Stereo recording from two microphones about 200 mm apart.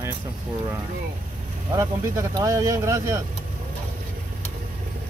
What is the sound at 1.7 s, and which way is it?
Speech, 15° right (ahead or behind).